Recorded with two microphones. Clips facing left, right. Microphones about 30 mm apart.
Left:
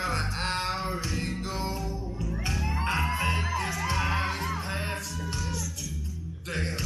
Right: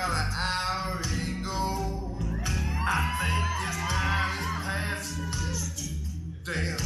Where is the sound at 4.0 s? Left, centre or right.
Centre.